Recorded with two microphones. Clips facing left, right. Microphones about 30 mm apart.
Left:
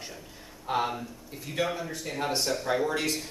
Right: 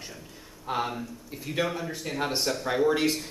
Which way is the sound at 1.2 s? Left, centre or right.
Centre.